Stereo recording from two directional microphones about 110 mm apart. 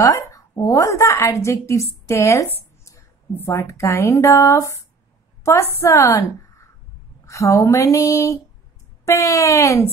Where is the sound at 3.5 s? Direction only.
25° left (ahead or behind).